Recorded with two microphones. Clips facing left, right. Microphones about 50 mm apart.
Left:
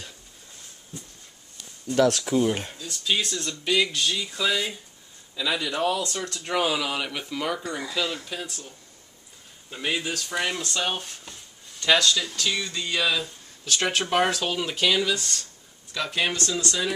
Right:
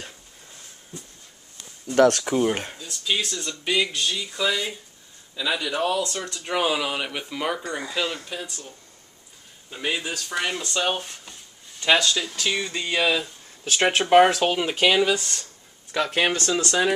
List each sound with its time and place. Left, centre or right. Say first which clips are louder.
2.3 s speech: right 1 dB; right
2.9 s speech: even; centre
8.3 s speech: right 1 dB; centre
9.7 s speech: even; centre
11.8 s speech: right 1 dB; centre
15.9 s speech: right 4 dB; right